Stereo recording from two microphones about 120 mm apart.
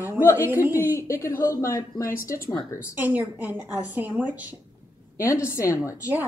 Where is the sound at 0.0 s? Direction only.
25° left (ahead or behind).